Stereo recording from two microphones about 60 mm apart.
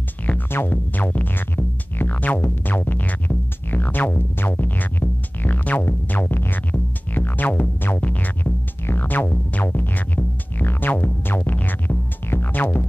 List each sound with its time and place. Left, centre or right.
0.5 s music: left